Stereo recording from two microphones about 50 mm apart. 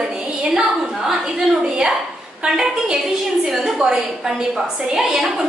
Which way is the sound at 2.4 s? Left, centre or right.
Centre.